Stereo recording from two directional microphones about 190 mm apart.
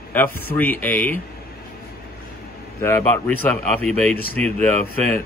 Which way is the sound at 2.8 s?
10° left (ahead or behind).